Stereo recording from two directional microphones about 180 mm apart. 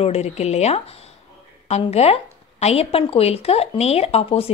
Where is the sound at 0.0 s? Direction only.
35° left (ahead or behind).